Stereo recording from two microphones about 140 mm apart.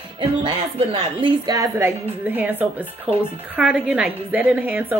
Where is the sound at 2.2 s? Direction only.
15° right (ahead or behind).